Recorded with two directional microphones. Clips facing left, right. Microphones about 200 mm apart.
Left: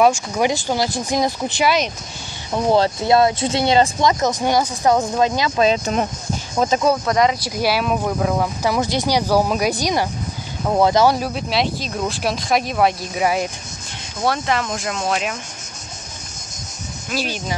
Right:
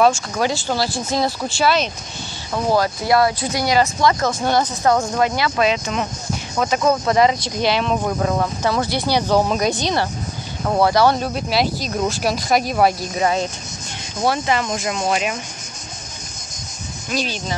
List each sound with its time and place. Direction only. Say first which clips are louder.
0.0 s speech: left 1 dB; 15° left (ahead or behind)
5.6 s speech: left 3 dB; 40° left (ahead or behind)
7.1 s speech: right 1 dB; centre (ahead or behind)
10.8 s speech: left 1 dB; 20° left (ahead or behind)
11.1 s speech: right 1 dB; centre (ahead or behind)
14.2 s speech: right 1 dB; centre (ahead or behind)
17.1 s speech: even; 10° left (ahead or behind)